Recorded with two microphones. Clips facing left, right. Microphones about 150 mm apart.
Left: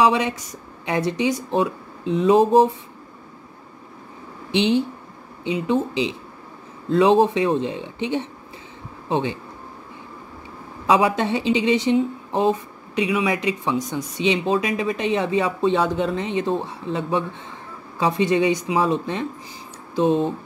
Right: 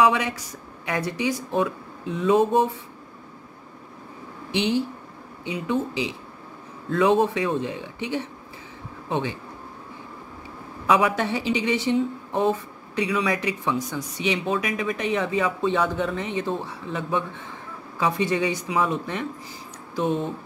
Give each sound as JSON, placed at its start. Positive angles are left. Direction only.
{"t": 0.0, "sound": "speech", "side_deg": 25}
{"t": 4.5, "sound": "a woman's voice", "side_deg": 25}
{"t": 10.9, "sound": "speech", "side_deg": 25}